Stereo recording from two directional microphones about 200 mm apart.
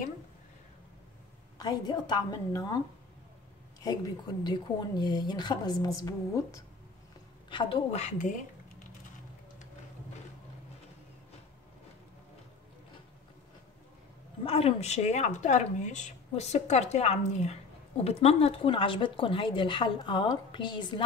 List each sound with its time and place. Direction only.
1.6 s speech: 20° left (ahead or behind)
4.4 s speech: 20° left (ahead or behind); by 8.8 s 40° left (ahead or behind)
14.4 s speech: 30° left (ahead or behind)